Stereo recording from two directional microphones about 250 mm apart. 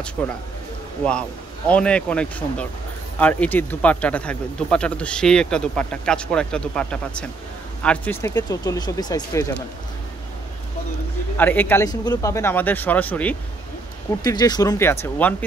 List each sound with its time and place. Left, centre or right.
1.7 s speech: centre
11.3 s speech: centre